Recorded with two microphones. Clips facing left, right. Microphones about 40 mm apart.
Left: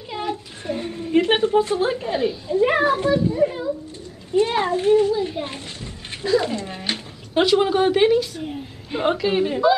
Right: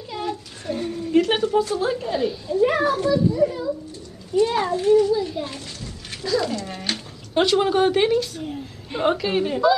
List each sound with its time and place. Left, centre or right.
0.1 s a woman's voice: left; by 9.6 s centre